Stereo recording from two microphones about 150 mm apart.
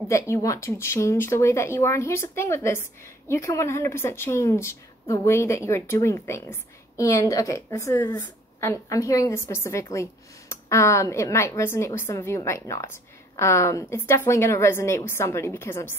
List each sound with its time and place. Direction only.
0.1 s a woman's voice: 20° left (ahead or behind)